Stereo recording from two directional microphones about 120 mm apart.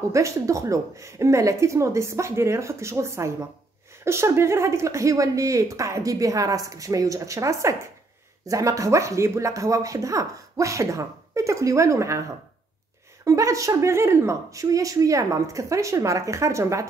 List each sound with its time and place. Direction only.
0.1 s speech: 25° right (ahead or behind)